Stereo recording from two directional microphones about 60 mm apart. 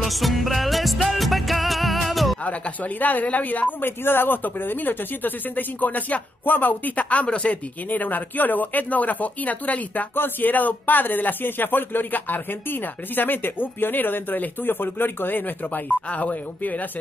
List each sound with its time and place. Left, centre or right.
0.0 s music: centre
2.4 s speech: left